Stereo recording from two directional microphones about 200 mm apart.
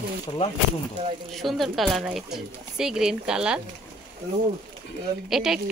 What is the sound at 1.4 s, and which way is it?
A woman's voice, centre (ahead or behind).